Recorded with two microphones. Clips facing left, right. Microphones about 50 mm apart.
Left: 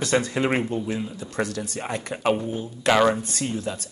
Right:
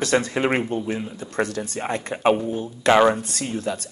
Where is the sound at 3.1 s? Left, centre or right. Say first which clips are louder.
Even; right.